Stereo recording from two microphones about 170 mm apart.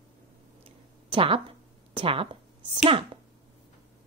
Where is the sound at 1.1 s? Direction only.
30° right (ahead or behind).